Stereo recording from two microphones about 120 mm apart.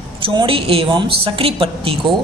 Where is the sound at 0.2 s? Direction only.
40° right (ahead or behind).